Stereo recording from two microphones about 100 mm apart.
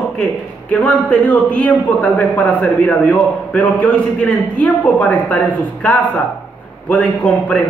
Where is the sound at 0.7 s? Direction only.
15° left (ahead or behind).